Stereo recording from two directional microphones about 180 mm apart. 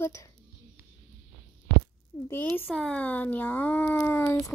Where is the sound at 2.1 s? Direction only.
20° left (ahead or behind).